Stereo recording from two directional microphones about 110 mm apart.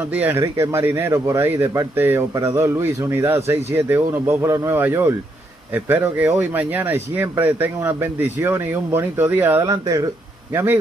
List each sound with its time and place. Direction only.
0.1 s speech: 15° right (ahead or behind)
9.7 s speech: 30° right (ahead or behind)
10.5 s speech: 20° right (ahead or behind)